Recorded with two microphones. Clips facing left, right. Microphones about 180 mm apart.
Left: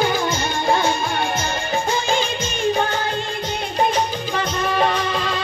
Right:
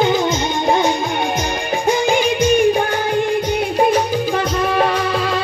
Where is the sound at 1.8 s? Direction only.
15° right (ahead or behind).